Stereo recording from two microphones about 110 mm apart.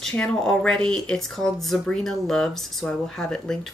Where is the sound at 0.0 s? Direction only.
5° left (ahead or behind).